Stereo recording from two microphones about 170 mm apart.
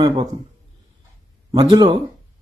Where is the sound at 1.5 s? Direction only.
25° right (ahead or behind).